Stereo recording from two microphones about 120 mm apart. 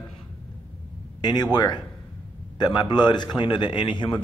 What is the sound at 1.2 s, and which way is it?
A man's voice, 35° left (ahead or behind).